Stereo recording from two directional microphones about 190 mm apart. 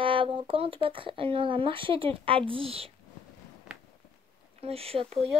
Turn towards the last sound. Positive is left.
turn(degrees=-30)  # may be behind; listen again after turning